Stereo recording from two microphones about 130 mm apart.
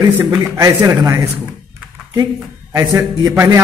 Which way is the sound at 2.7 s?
25° right (ahead or behind).